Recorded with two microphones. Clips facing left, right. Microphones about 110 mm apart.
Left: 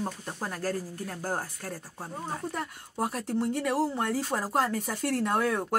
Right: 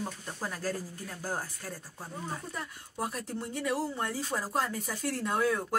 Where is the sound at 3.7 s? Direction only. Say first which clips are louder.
Left 3 dB; 25° left (ahead or behind).